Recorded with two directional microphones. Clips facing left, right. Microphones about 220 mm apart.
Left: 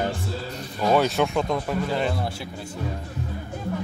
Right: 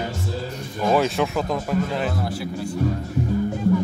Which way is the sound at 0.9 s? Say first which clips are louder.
Even; centre (ahead or behind).